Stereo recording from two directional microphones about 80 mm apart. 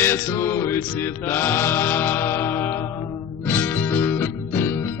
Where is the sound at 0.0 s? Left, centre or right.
Left.